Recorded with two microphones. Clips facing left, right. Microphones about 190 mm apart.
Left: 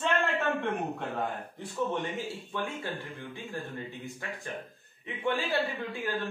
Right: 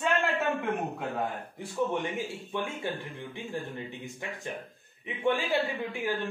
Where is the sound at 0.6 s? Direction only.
5° right (ahead or behind).